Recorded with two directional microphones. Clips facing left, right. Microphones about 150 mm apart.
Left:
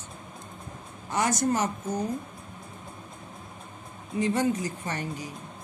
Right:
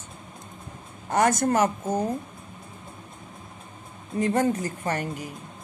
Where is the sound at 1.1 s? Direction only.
50° right (ahead or behind).